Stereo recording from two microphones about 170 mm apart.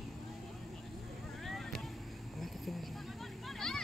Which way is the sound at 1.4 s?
Centre (ahead or behind).